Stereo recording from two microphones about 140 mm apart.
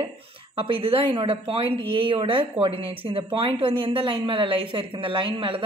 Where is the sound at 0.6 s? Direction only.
40° right (ahead or behind).